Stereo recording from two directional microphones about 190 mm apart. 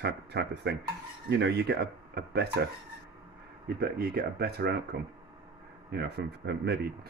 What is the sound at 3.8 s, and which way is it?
Speech, 55° right (ahead or behind).